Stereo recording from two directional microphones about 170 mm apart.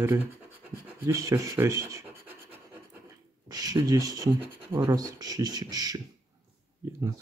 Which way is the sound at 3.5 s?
20° right (ahead or behind).